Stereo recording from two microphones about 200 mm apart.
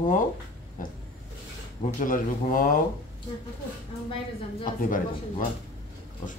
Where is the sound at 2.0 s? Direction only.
45° left (ahead or behind).